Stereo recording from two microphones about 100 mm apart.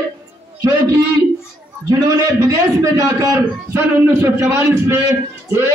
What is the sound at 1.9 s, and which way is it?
A man's voice, 40° right (ahead or behind).